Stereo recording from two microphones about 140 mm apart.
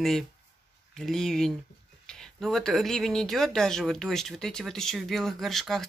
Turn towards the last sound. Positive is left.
turn(degrees=0)  # may be behind; listen again after turning